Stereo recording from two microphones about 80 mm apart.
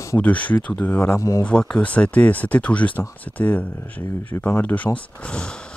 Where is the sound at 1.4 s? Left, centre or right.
Centre.